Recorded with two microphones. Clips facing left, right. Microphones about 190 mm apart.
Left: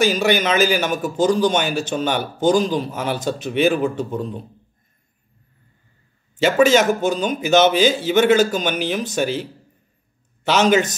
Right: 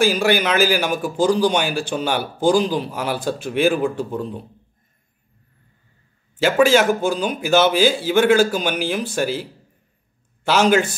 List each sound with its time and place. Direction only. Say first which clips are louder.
0.0 s speech: even; 10° right (ahead or behind)
6.4 s speech: even; 10° right (ahead or behind)